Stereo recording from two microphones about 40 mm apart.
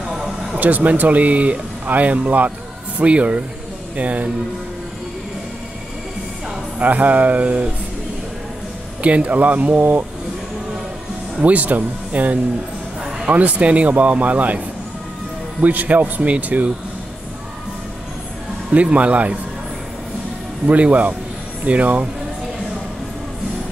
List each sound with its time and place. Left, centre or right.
0.1 s a sound: centre
0.6 s speech: right
3.0 s speech: right
6.8 s speech: right
9.0 s speech: right
11.4 s speech: right
15.6 s speech: right
18.7 s speech: right
20.6 s speech: right